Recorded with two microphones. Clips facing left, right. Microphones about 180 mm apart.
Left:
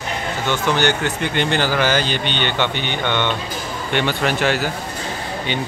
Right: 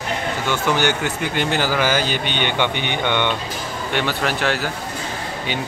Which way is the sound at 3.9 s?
Centre (ahead or behind).